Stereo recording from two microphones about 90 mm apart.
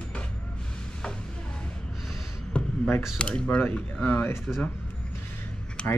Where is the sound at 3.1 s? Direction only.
10° left (ahead or behind).